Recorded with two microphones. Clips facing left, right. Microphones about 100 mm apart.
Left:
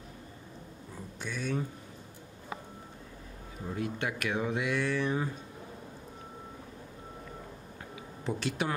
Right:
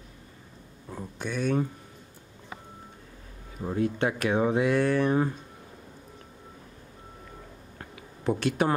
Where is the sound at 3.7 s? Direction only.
30° right (ahead or behind); by 5.3 s 50° right (ahead or behind).